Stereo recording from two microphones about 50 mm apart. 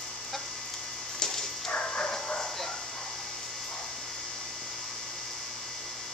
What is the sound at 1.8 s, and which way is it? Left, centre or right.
Bow-wow, centre.